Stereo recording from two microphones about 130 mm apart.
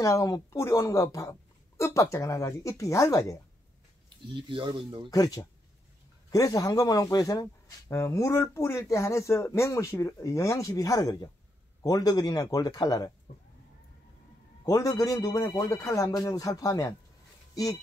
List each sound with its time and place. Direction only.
0.0 s speech: 25° left (ahead or behind)
4.3 s speech: 40° right (ahead or behind)
5.1 s speech: 25° left (ahead or behind)
14.6 s speech: 30° left (ahead or behind)